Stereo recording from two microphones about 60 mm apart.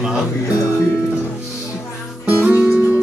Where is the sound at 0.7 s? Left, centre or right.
Left.